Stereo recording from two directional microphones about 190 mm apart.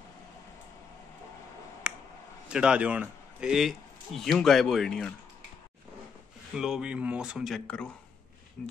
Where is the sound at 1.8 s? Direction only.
5° right (ahead or behind).